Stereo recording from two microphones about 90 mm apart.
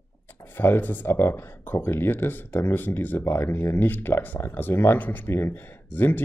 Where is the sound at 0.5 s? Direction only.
25° left (ahead or behind).